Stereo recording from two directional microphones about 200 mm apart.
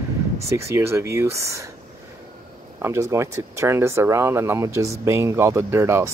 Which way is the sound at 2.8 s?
15° right (ahead or behind).